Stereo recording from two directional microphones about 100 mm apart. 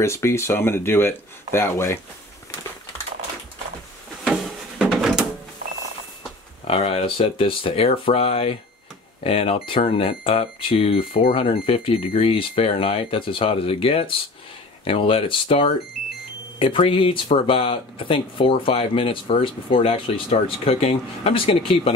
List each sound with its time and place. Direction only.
0.0 s speech: 30° left (ahead or behind)
4.2 s drawer open or close: centre (ahead or behind)
6.7 s speech: 85° left; by 21.9 s 65° left (ahead or behind)